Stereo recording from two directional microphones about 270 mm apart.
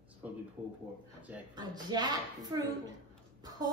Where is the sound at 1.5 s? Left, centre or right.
Centre.